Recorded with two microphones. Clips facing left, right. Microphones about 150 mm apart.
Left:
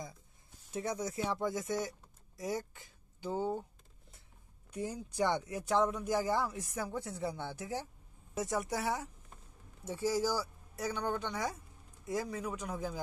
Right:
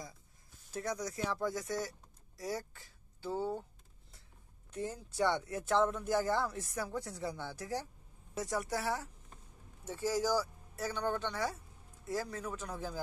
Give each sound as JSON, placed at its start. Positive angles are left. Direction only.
{"t": 0.7, "sound": "speech", "side_deg": 30}
{"t": 4.7, "sound": "speech", "side_deg": 15}